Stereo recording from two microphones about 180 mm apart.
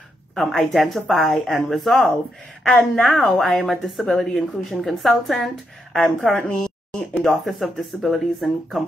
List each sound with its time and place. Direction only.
0.3 s speech: centre (ahead or behind)